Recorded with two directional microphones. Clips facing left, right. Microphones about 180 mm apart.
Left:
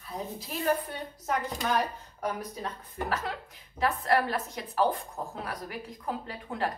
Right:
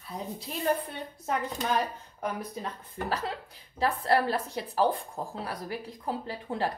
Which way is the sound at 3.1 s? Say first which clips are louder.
Right 1 dB; 30° right (ahead or behind).